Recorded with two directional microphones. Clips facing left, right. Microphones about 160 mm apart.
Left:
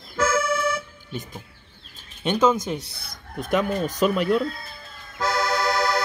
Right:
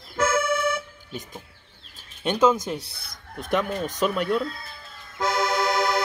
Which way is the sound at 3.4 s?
5° left (ahead or behind).